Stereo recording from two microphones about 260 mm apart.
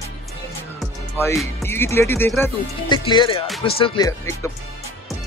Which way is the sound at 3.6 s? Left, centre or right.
Left.